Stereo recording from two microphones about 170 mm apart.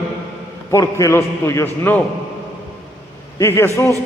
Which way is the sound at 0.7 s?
20° left (ahead or behind).